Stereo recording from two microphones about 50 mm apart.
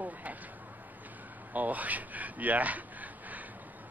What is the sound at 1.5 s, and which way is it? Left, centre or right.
Speech, right.